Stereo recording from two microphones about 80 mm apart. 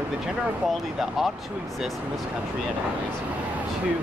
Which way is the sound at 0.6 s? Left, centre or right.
Centre.